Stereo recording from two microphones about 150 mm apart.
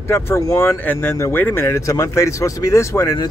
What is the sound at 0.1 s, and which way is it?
Speech, 20° left (ahead or behind).